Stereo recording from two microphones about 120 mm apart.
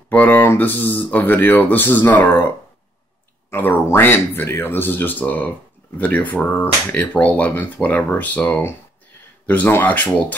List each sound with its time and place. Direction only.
0.1 s speech: 15° left (ahead or behind)